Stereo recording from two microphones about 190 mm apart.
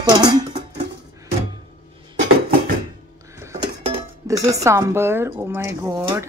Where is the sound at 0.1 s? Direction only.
20° right (ahead or behind).